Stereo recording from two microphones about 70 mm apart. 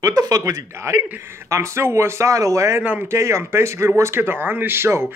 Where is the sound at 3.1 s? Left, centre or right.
Right.